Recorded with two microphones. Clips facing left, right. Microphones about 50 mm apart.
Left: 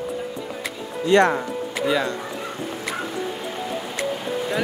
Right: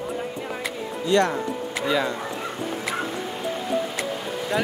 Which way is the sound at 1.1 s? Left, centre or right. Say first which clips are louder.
Left 4 dB; left.